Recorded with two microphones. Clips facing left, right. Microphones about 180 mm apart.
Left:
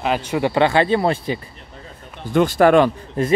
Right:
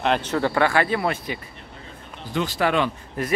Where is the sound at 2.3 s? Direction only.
50° left (ahead or behind).